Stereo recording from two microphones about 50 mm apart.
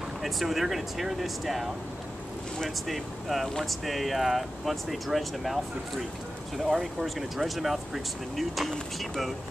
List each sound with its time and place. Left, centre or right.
0.2 s speech: centre